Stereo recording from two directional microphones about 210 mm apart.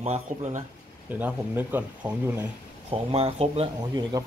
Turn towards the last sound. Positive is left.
turn(degrees=-25)  # may be behind; listen again after turning